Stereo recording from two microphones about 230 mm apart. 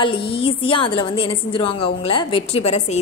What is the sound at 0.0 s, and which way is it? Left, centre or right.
A woman's voice, left.